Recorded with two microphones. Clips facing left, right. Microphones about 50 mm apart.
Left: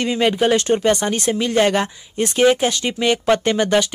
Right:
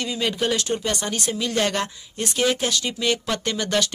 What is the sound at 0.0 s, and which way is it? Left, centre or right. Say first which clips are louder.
Speech: left 7 dB; left.